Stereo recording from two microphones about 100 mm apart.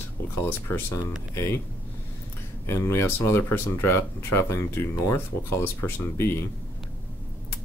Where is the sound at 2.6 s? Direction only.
25° left (ahead or behind).